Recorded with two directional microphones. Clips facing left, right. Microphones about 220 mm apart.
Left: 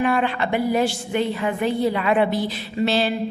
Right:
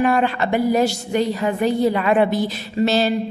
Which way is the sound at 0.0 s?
40° right (ahead or behind).